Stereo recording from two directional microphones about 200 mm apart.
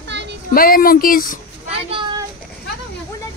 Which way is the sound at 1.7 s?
25° right (ahead or behind).